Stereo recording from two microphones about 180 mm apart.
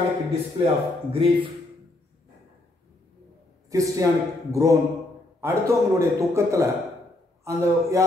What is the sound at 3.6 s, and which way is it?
A man's voice, 20° right (ahead or behind).